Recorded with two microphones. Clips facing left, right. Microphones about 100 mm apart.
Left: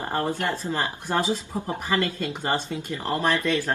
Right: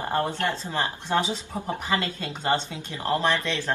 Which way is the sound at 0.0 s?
15° left (ahead or behind).